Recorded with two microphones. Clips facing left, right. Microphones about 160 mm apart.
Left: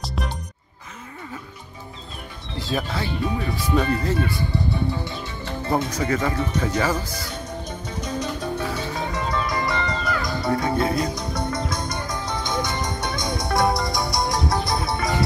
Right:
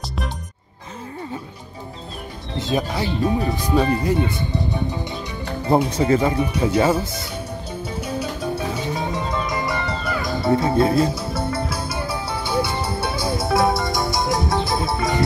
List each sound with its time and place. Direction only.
0.0 s music: centre (ahead or behind)
2.6 s speech: 20° right (ahead or behind)
3.6 s speech: 30° right (ahead or behind)
4.0 s speech: 15° right (ahead or behind)
6.3 s speech: 10° right (ahead or behind)
6.8 s speech: 25° right (ahead or behind)
8.0 s music: 10° right (ahead or behind)
9.7 s music: 5° right (ahead or behind)
10.5 s speech: 25° right (ahead or behind)
11.1 s music: 5° right (ahead or behind)